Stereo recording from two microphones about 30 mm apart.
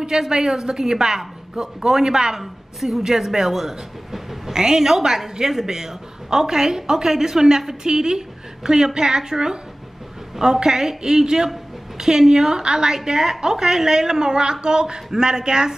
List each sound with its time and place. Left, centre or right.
0.3 s a woman's voice: centre
2.4 s a woman's voice: centre
4.1 s train: centre
4.9 s a woman's voice: centre